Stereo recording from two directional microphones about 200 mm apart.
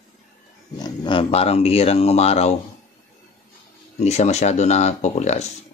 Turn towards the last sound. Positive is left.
turn(degrees=35)  # may be behind; listen again after turning